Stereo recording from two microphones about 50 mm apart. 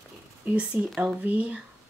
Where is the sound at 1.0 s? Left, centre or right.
Right.